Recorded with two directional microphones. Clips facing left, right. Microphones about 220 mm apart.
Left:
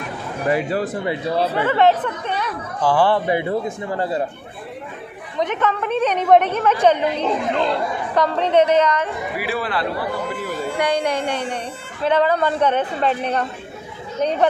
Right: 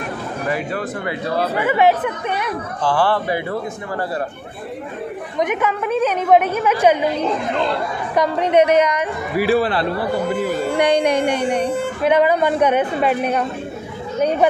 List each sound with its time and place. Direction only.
0.5 s speech: 35° left (ahead or behind)
1.6 s a woman's voice: 10° right (ahead or behind)
2.8 s speech: 15° left (ahead or behind)
5.4 s a woman's voice: 10° right (ahead or behind)
8.1 s a woman's voice: 10° right (ahead or behind)
9.4 s speech: 30° right (ahead or behind)
10.8 s a woman's voice: 20° right (ahead or behind)